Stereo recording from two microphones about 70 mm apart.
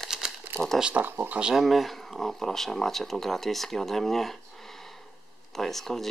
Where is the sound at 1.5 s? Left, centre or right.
Centre.